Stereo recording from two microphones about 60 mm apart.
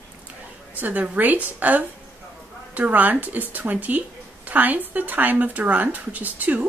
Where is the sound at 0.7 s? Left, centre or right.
Right.